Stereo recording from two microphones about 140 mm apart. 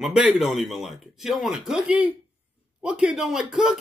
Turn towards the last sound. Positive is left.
turn(degrees=-5)  # may be behind; listen again after turning